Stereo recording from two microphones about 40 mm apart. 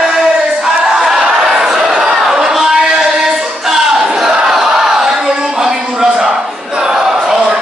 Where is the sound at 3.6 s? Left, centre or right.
Centre.